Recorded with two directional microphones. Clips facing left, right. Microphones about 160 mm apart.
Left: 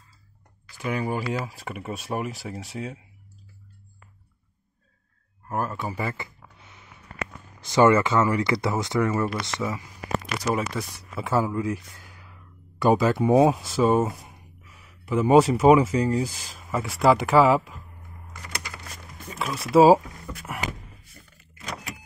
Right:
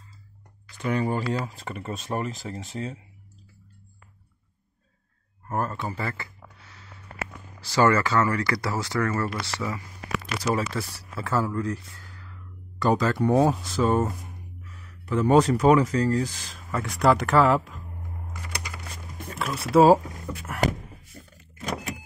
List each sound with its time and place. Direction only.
0.7 s speech: 5° left (ahead or behind)
5.5 s a sound: 5° left (ahead or behind)
7.6 s speech: 20° left (ahead or behind)
19.2 s speech: centre (ahead or behind)
21.2 s vehicle: 25° right (ahead or behind)